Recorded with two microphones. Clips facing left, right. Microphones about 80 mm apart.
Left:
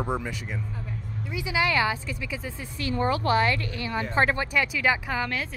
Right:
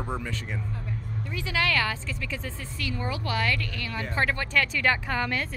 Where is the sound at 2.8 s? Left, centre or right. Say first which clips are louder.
Left 7 dB; left.